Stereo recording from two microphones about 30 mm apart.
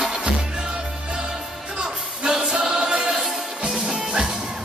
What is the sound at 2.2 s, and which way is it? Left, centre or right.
Choir, centre.